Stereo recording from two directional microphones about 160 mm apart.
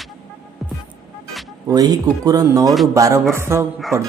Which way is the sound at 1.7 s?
25° right (ahead or behind).